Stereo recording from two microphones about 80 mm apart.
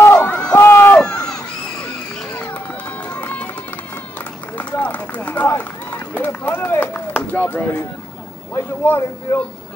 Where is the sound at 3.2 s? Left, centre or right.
Left.